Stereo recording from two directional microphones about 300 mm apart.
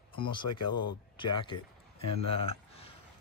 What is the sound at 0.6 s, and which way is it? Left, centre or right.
Speech, left.